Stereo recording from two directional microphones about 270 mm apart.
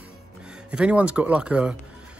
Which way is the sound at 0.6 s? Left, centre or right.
Centre.